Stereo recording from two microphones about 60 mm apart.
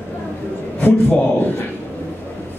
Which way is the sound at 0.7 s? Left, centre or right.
Left.